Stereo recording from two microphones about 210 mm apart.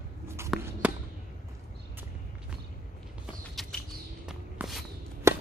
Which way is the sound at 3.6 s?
Centre (ahead or behind).